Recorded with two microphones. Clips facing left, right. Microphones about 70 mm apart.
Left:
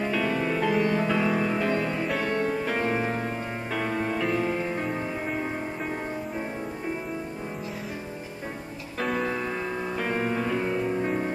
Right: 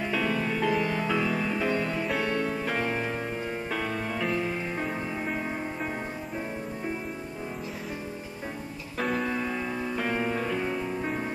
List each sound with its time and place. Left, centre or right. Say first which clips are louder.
0.0 s music: left 2 dB; centre
1.2 s music: left 3 dB; centre
2.0 s music: left 2 dB; centre
2.9 s music: left 3 dB; centre
9.0 s music: left 1 dB; centre